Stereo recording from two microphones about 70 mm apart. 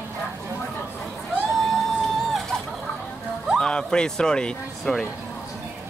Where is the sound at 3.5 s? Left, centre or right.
Centre.